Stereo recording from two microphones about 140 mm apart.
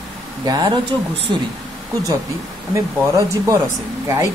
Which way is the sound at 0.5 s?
30° right (ahead or behind).